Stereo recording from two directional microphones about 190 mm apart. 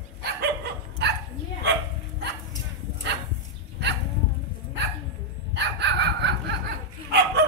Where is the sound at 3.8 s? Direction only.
65° right (ahead or behind).